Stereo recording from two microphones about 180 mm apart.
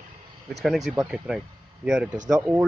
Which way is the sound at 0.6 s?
Centre (ahead or behind).